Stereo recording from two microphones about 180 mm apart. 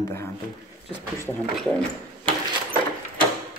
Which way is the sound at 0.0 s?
15° left (ahead or behind).